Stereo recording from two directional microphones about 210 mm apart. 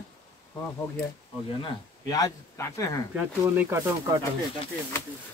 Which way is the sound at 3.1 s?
10° right (ahead or behind).